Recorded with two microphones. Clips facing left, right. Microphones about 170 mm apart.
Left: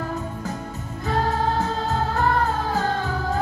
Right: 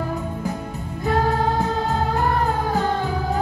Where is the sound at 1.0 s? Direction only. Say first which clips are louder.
Right 3 dB; 15° right (ahead or behind).